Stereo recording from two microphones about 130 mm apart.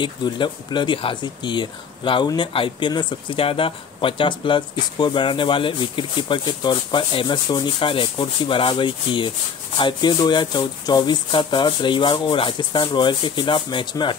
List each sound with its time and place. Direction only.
0.0 s speech: 35° left (ahead or behind)